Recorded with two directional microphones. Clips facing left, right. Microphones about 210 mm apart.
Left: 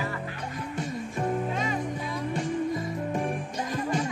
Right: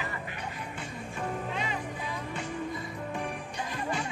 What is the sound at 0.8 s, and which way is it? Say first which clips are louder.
Music: left 9 dB; 40° left (ahead or behind).